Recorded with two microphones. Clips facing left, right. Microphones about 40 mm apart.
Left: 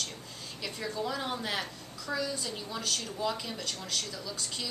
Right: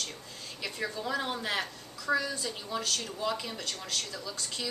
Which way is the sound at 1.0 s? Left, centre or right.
Centre.